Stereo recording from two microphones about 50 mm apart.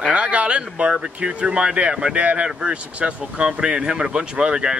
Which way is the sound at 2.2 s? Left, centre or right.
Right.